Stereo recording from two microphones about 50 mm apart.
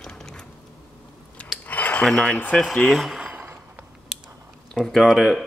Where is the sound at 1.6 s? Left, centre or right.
Left.